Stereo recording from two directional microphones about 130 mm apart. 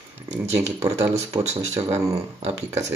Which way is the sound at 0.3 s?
15° right (ahead or behind).